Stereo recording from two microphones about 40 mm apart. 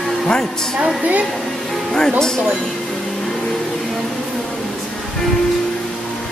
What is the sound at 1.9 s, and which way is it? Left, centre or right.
Speech, centre.